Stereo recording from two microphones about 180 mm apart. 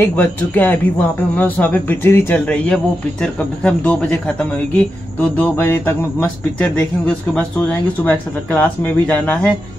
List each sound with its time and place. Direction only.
0.0 s speech: 10° left (ahead or behind)